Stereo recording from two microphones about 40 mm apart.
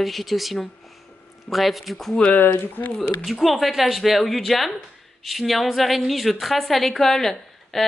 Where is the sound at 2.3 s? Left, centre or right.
Left.